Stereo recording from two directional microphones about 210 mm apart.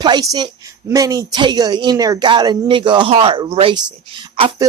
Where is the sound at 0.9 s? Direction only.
15° right (ahead or behind).